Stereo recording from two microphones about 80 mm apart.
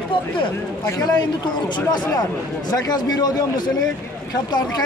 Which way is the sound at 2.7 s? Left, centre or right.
Left.